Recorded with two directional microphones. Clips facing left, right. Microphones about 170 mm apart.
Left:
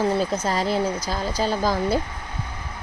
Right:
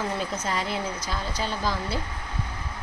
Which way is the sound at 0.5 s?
35° left (ahead or behind).